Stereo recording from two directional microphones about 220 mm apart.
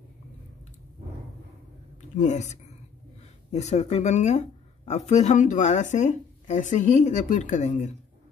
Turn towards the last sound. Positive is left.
turn(degrees=30)  # may be behind; listen again after turning